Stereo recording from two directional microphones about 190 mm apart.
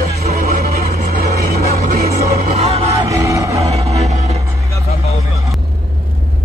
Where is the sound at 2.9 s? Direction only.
15° right (ahead or behind).